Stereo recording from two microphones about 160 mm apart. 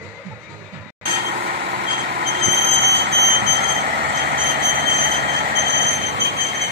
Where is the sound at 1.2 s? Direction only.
60° right (ahead or behind).